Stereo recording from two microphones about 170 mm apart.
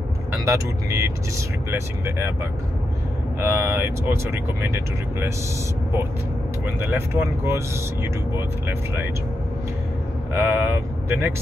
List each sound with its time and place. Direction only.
0.5 s speech: 15° right (ahead or behind)
3.3 s speech: 15° right (ahead or behind)
6.6 s speech: 10° right (ahead or behind)
10.3 s speech: 10° right (ahead or behind)